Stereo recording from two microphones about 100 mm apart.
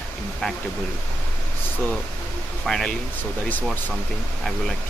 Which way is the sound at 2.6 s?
5° left (ahead or behind).